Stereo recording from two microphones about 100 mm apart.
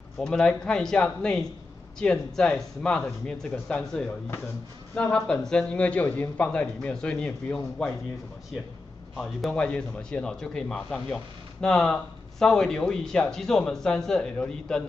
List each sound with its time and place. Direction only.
0.2 s a man's voice: 10° left (ahead or behind)
5.1 s a man's voice: 5° left (ahead or behind)
9.1 s a man's voice: centre (ahead or behind)